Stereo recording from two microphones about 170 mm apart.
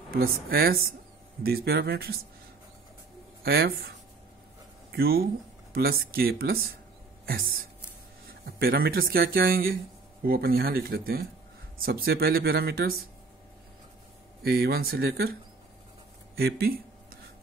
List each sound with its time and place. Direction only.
0.1 s speech: 60° right (ahead or behind)
3.4 s speech: 65° right (ahead or behind)
4.9 s speech: 65° right (ahead or behind)
8.3 s speech: 65° right (ahead or behind)
14.4 s speech: 65° right (ahead or behind)
16.3 s a sound: 65° right (ahead or behind)